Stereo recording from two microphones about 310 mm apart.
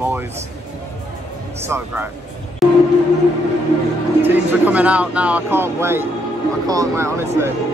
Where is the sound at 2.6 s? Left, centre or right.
Centre.